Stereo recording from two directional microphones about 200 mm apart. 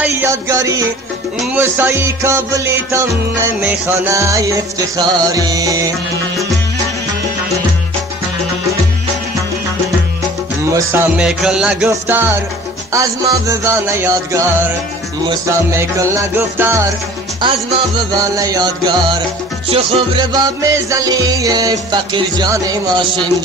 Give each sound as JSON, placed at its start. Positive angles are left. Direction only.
{"t": 0.0, "sound": "music", "side_deg": -10}
{"t": 10.7, "sound": "music", "side_deg": -15}
{"t": 17.4, "sound": "music", "side_deg": -25}